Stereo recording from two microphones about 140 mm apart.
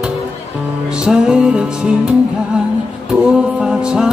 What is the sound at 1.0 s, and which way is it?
Music, 5° right (ahead or behind).